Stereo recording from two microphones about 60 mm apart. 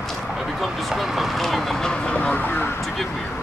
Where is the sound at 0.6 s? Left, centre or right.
Centre; by 2.8 s left.